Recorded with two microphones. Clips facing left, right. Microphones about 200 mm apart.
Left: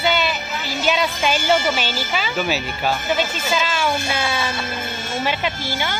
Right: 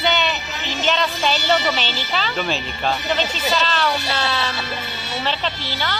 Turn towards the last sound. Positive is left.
turn(degrees=10)  # may be behind; listen again after turning